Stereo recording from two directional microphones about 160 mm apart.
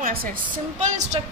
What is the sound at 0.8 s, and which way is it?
Speech, 45° right (ahead or behind).